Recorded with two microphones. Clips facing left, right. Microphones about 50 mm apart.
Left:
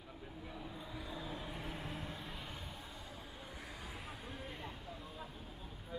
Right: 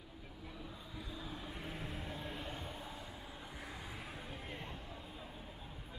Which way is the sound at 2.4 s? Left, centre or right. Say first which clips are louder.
Right 3 dB; right.